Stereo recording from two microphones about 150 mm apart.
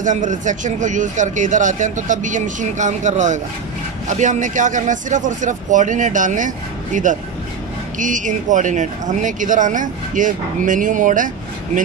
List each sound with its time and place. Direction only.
0.0 s speech: 55° right (ahead or behind)